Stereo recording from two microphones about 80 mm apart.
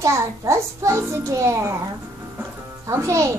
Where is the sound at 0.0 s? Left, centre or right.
Right.